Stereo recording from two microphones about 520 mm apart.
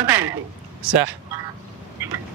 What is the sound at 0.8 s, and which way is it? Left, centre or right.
Speech, right.